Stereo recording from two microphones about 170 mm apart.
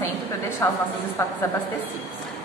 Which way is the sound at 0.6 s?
15° left (ahead or behind).